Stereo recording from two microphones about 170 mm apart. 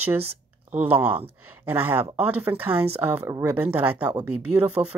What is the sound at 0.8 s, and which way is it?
Speech, 10° right (ahead or behind).